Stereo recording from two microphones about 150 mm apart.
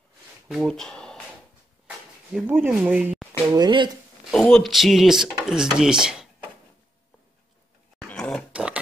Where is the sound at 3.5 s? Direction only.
30° right (ahead or behind).